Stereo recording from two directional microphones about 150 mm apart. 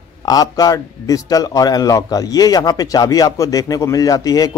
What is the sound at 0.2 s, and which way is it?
A man's voice, 25° left (ahead or behind).